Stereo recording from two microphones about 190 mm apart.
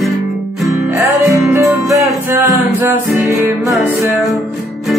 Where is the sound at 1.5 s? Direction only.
15° right (ahead or behind).